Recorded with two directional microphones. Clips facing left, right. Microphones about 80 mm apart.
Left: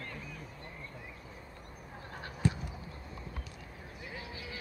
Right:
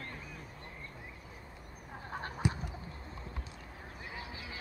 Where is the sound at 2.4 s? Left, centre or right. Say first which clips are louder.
Left 3 dB; centre.